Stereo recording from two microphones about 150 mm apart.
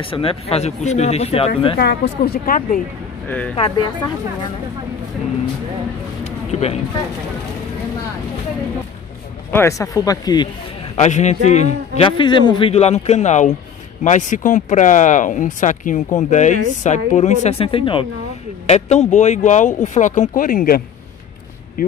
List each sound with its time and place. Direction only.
0.0 s speech: 35° left (ahead or behind)
1.8 s a woman's voice: 90° left; by 2.8 s 70° left (ahead or behind)
3.3 s speech: 10° left (ahead or behind)
6.5 s speech: 45° left (ahead or behind)
9.5 s speech: 20° left (ahead or behind)
11.0 s speech: 50° left (ahead or behind)
12.0 s a man's voice: 35° left (ahead or behind)
18.7 s speech: 50° left (ahead or behind); by 20.8 s 70° left (ahead or behind)